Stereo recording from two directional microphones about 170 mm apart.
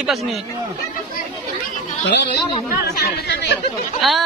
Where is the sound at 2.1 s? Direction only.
90° left.